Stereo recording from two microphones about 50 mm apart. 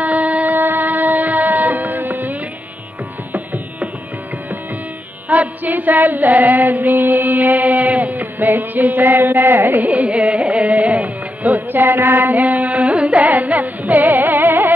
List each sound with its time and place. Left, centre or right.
0.0 s music: right
5.3 s music: right
9.8 s music: right